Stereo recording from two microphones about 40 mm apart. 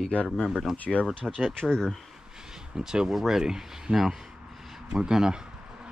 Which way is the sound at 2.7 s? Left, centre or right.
Centre.